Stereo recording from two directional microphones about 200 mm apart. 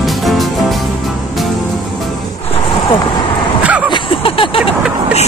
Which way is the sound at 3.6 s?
5° right (ahead or behind).